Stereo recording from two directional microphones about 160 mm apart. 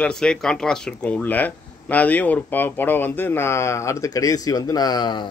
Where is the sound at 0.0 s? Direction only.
5° left (ahead or behind).